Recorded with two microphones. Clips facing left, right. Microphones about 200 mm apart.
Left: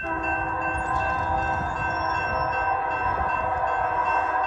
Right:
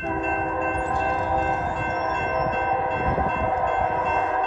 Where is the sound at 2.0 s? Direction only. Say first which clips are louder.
Right 4 dB; 15° right (ahead or behind).